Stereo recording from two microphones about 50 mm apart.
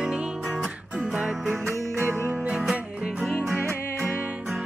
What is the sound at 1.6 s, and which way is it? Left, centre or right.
Music, right.